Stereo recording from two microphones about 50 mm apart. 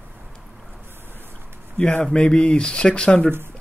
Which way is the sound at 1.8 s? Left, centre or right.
Centre.